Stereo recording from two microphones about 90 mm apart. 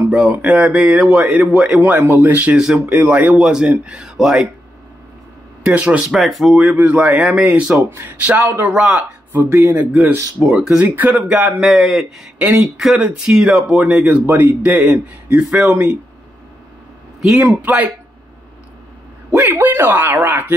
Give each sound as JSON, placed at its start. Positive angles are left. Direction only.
{"t": 0.3, "sound": "speech", "side_deg": -15}
{"t": 2.0, "sound": "speech", "side_deg": -30}
{"t": 2.2, "sound": "speech", "side_deg": -15}
{"t": 5.6, "sound": "speech", "side_deg": -15}
{"t": 6.6, "sound": "speech", "side_deg": -15}
{"t": 8.6, "sound": "speech", "side_deg": -10}
{"t": 9.3, "sound": "speech", "side_deg": -25}
{"t": 10.4, "sound": "speech", "side_deg": -5}
{"t": 10.8, "sound": "speech", "side_deg": -20}
{"t": 11.6, "sound": "speech", "side_deg": -5}
{"t": 12.4, "sound": "speech", "side_deg": -20}
{"t": 17.4, "sound": "speech", "side_deg": -15}
{"t": 19.3, "sound": "speech", "side_deg": -20}